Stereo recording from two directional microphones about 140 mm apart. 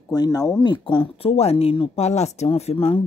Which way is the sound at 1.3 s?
45° left (ahead or behind).